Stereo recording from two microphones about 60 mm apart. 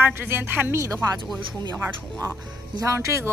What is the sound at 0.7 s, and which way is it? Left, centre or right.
Speech, right.